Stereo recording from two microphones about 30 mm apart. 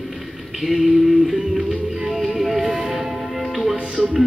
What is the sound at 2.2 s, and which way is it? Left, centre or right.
Music, centre.